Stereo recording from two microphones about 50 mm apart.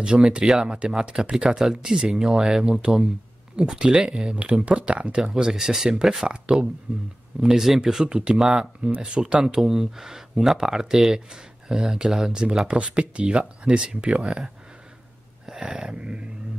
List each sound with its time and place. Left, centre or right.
0.3 s speech: centre
5.2 s speech: centre
8.0 s speech: centre
8.8 s speech: right
9.4 s speech: centre
15.4 s a sound: centre